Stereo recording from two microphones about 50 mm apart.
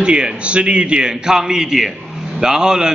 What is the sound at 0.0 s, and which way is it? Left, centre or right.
A man's voice, right.